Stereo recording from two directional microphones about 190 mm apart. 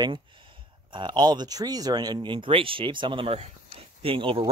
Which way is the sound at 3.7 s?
30° right (ahead or behind).